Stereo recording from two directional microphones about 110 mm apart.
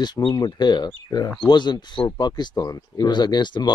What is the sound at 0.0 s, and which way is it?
Speech, 40° left (ahead or behind).